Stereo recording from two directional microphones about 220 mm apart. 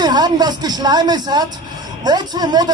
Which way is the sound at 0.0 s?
20° right (ahead or behind).